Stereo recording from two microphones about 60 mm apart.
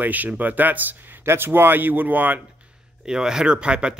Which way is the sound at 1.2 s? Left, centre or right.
Right.